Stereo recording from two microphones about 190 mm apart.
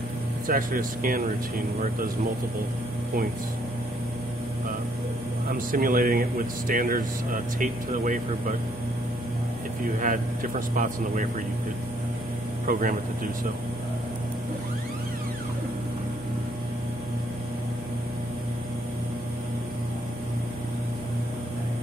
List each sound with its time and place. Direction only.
0.5 s speech: 45° right (ahead or behind)
5.5 s speech: 45° right (ahead or behind)
9.9 s speech: 45° right (ahead or behind)
12.6 s speech: 45° right (ahead or behind)